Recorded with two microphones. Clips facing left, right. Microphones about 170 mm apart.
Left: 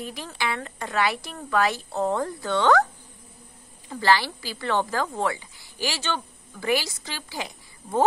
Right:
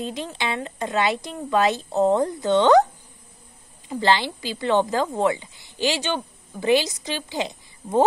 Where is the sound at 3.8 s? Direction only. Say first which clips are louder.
Right 1 dB; 20° right (ahead or behind).